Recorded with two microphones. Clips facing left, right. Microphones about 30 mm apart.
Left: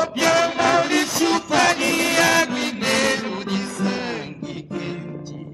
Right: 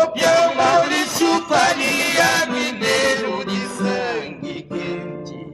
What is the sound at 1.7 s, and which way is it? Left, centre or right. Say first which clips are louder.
Music: right 1 dB; right.